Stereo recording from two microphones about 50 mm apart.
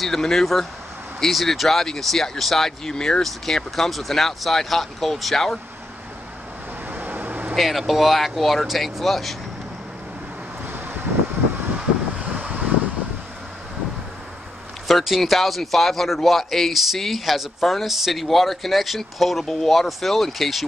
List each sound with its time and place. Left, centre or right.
0.0 s a man's voice: centre
6.9 s vehicle: right
7.5 s a man's voice: centre
12.2 s vehicle: right
14.9 s a man's voice: centre